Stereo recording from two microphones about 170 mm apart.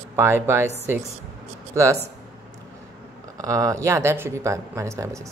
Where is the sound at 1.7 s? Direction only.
15° right (ahead or behind).